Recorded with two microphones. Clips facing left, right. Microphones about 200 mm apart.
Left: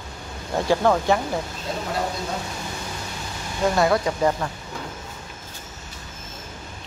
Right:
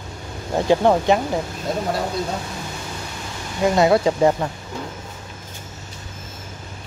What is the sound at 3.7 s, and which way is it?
Speech, 25° right (ahead or behind).